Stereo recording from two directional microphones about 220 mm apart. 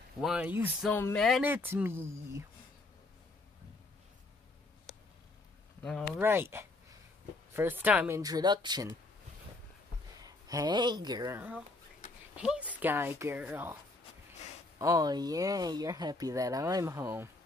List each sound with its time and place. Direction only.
0.2 s speech: 5° right (ahead or behind)
0.9 s speech: 5° left (ahead or behind); by 2.4 s 10° right (ahead or behind)
5.8 s a sound: 5° left (ahead or behind)
6.1 s speech: 10° right (ahead or behind)
7.5 s speech: 10° right (ahead or behind)
8.2 s speech: 15° right (ahead or behind)
10.2 s speech: 15° right (ahead or behind)
14.8 s speech: 15° right (ahead or behind)